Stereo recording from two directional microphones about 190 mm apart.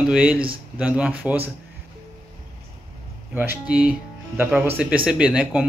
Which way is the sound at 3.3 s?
10° right (ahead or behind).